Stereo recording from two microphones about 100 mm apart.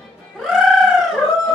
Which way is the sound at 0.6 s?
Centre (ahead or behind).